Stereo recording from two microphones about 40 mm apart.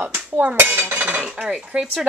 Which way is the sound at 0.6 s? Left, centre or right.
Right.